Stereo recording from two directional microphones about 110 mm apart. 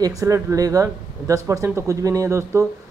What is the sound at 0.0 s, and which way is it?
Speech, 35° right (ahead or behind).